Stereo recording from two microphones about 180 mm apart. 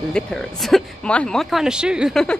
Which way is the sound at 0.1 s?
Centre (ahead or behind).